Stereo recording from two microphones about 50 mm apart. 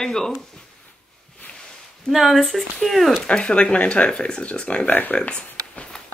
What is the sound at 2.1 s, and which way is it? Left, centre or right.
Speech, centre.